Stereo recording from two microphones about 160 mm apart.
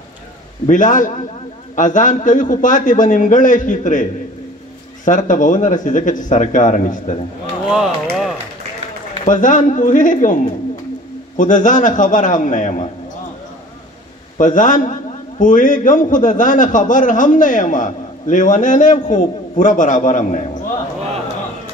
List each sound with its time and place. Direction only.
0.7 s a man's voice: 55° left (ahead or behind)
5.0 s a man's voice: 50° left (ahead or behind)
7.6 s a sound: 5° right (ahead or behind)
9.2 s a man's voice: 50° left (ahead or behind)
14.4 s a man's voice: 55° left (ahead or behind)